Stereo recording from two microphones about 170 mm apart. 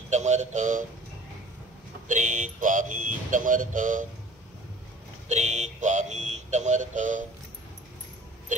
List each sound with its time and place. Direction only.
0.1 s speech: 45° right (ahead or behind)
2.0 s speech: 50° right (ahead or behind)
5.3 s speech: 40° right (ahead or behind)